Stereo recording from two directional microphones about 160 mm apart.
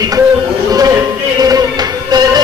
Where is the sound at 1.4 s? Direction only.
25° right (ahead or behind).